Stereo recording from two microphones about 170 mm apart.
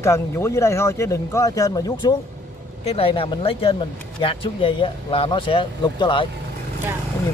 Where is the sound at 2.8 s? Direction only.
35° left (ahead or behind).